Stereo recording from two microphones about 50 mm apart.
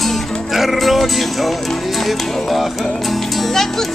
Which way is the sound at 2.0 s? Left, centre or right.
Centre.